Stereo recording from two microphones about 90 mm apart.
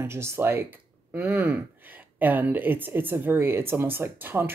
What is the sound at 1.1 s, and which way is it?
Speech, 20° right (ahead or behind).